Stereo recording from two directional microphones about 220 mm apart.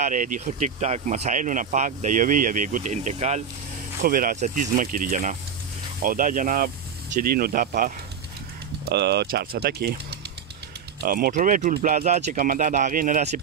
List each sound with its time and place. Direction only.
0.0 s speech: 35° right (ahead or behind)
11.0 s speech: 45° right (ahead or behind)